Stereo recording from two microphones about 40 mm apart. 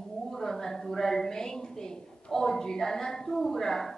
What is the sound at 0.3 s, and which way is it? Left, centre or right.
A woman's voice, centre.